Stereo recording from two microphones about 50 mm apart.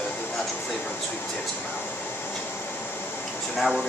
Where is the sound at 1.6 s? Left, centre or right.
Left.